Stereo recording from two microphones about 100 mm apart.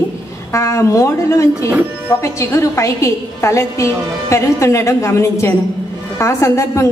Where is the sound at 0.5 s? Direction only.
30° left (ahead or behind).